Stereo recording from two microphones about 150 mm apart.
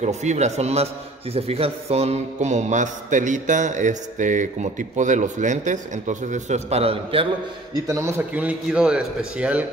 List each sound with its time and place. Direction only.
0.0 s speech: 50° right (ahead or behind)
7.7 s a man's voice: 15° right (ahead or behind)